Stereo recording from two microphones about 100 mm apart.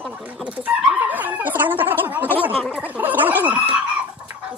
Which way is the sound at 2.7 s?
15° right (ahead or behind).